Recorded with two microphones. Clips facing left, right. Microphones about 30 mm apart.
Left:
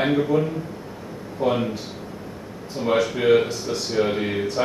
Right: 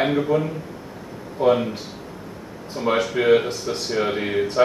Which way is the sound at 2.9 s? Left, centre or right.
Right.